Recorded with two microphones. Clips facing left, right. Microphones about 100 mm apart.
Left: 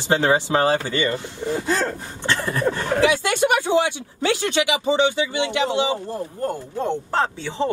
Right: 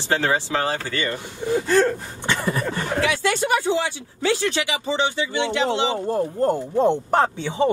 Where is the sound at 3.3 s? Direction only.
65° left (ahead or behind).